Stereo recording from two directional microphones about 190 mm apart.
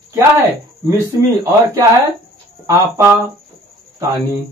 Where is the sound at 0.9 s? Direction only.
15° right (ahead or behind).